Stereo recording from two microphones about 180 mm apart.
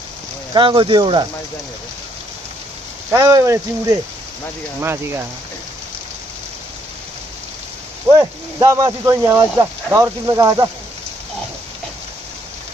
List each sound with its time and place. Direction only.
0.5 s speech: 30° right (ahead or behind)
3.1 s speech: 15° right (ahead or behind)
8.1 s speech: 20° right (ahead or behind)